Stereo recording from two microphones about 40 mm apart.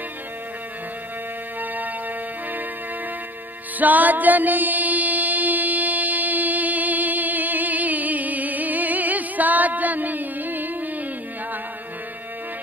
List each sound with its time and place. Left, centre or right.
3.8 s music: right